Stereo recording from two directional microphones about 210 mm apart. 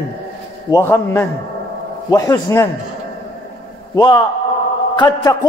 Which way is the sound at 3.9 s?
20° left (ahead or behind).